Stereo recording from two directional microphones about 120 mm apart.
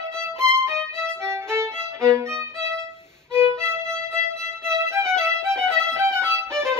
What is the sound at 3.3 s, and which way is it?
Violin, 20° right (ahead or behind).